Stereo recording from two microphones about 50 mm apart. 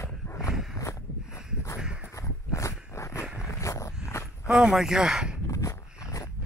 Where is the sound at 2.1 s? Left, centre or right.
Left.